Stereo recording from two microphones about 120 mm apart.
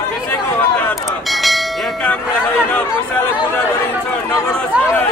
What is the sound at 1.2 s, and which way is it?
Church bell, centre (ahead or behind).